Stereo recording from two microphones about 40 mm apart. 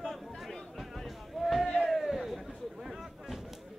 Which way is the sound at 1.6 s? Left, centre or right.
Centre.